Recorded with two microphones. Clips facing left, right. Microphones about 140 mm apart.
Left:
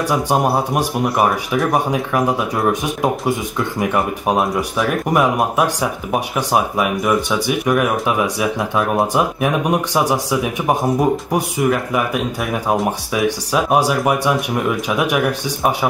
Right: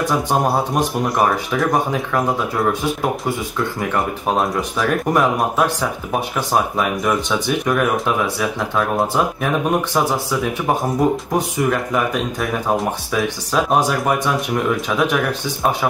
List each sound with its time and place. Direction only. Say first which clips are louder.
0.0 s speech: left 1 dB; 10° left (ahead or behind)